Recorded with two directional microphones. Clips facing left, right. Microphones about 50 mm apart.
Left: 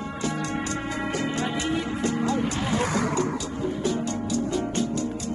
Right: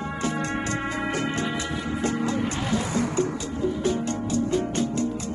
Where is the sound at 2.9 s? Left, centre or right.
Left.